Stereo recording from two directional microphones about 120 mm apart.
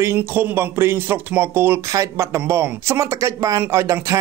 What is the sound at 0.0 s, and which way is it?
Speech, 20° right (ahead or behind).